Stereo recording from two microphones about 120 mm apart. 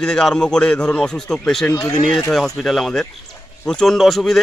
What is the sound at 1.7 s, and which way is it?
Speech, 30° left (ahead or behind).